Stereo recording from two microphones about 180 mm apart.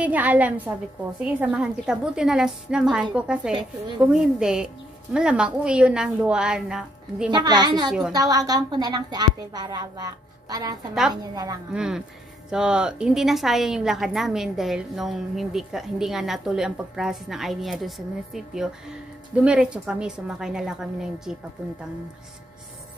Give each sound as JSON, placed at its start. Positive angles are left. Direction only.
{"t": 0.0, "sound": "a woman's voice", "side_deg": -10}
{"t": 7.2, "sound": "speech", "side_deg": -25}
{"t": 11.7, "sound": "a woman's voice", "side_deg": -5}